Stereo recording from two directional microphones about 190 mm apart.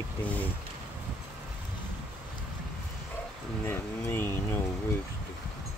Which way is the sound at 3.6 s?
15° left (ahead or behind).